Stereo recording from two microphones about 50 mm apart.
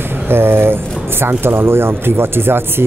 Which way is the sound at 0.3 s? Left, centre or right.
Right.